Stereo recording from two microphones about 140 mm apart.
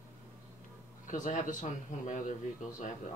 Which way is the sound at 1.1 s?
65° left (ahead or behind).